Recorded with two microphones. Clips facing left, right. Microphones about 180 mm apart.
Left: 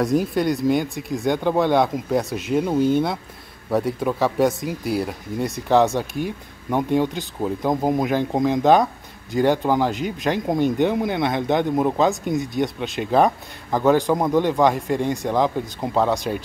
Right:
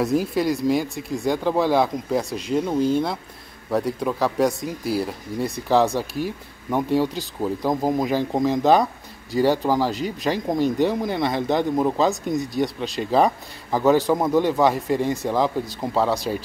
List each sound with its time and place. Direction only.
0.0 s speech: centre (ahead or behind)